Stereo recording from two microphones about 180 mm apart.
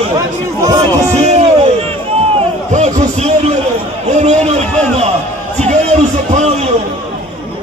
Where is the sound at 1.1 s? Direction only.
40° right (ahead or behind).